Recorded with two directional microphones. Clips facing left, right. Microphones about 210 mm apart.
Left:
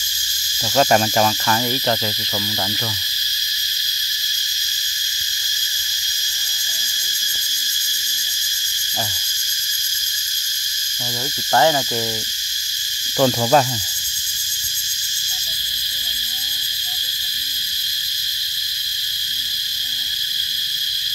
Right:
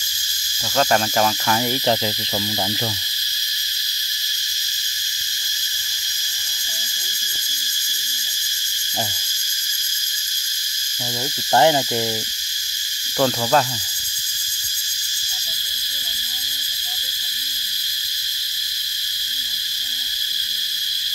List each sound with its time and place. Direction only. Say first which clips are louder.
0.7 s cricket: left 3 dB; 10° left (ahead or behind)
1.2 s cricket: left 1 dB; 10° right (ahead or behind)
11.5 s owl: right 1 dB; 20° right (ahead or behind)
13.2 s cricket: left 3 dB; 10° left (ahead or behind)